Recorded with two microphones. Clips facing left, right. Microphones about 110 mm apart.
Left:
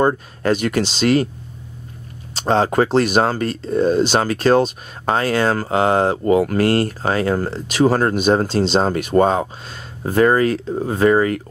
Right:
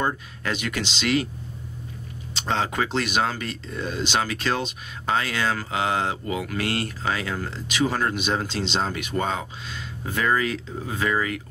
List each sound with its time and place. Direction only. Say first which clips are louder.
0.0 s speech: left 9 dB; 40° left (ahead or behind)
2.3 s speech: left 9 dB; 40° left (ahead or behind)